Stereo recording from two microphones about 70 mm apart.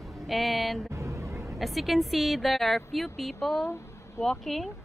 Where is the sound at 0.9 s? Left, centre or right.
Right.